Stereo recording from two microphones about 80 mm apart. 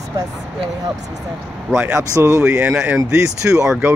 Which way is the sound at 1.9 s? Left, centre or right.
Right.